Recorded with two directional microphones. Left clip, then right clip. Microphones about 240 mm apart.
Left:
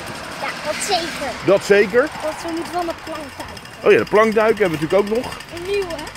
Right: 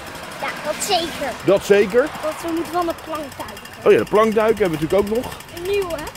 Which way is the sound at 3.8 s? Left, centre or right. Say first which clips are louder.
Left 1 dB; centre.